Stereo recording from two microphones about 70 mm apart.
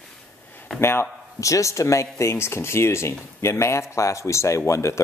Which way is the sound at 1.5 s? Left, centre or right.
Left.